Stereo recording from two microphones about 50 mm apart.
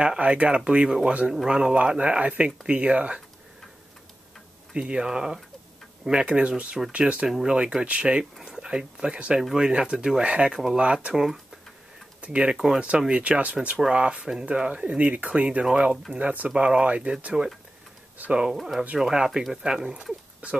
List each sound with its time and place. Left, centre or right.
0.0 s speech: right
0.7 s speech: centre
4.7 s speech: centre
7.2 s speech: centre
7.8 s speech: right
10.5 s speech: centre
10.8 s speech: right
12.2 s speech: right
12.5 s speech: centre
13.1 s speech: right
18.3 s speech: centre
18.6 s speech: centre